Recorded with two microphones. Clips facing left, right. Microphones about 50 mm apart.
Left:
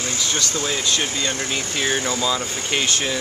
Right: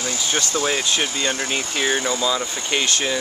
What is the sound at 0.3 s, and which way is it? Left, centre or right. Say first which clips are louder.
Speech: right 4 dB; right.